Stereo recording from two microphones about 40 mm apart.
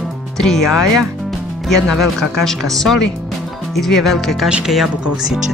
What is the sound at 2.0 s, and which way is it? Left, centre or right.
Speech, centre.